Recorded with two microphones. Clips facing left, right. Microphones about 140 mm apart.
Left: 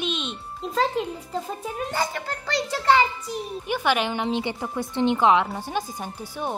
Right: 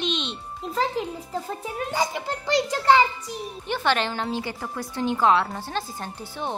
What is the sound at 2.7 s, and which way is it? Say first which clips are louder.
Speech: even; 10° right (ahead or behind).